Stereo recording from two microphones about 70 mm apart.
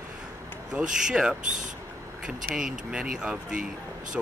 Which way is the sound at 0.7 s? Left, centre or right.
Centre.